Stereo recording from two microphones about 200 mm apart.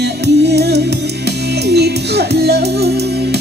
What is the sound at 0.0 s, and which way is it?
Music, 55° right (ahead or behind).